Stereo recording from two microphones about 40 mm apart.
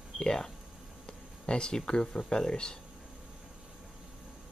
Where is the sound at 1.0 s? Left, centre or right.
Left.